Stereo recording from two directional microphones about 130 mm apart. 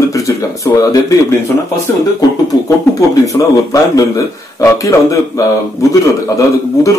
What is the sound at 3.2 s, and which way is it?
A man's voice, 25° left (ahead or behind).